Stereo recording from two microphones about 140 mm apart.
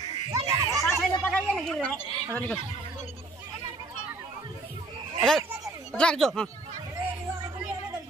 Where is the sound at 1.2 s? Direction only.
5° left (ahead or behind).